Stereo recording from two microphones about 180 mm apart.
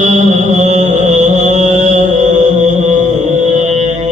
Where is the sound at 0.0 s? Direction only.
40° right (ahead or behind).